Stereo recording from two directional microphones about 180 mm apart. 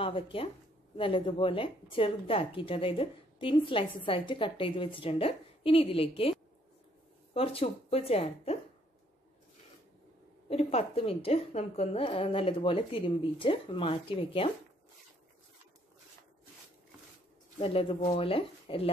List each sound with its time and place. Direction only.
0.0 s a woman's voice: 30° left (ahead or behind)
7.3 s a woman's voice: 30° left (ahead or behind)
10.5 s a woman's voice: 35° left (ahead or behind)
17.6 s a woman's voice: 30° left (ahead or behind)